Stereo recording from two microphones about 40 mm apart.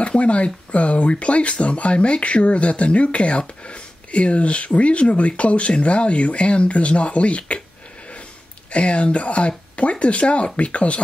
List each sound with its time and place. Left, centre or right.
0.0 s speech: left
8.7 s speech: left